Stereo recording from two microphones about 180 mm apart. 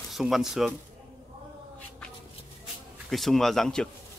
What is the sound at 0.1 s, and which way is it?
Speech, centre (ahead or behind).